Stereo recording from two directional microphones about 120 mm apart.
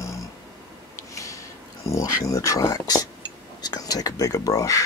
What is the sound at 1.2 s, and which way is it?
Speech, 25° left (ahead or behind).